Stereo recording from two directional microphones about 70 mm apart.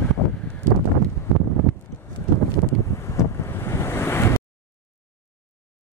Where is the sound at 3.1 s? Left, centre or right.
Left.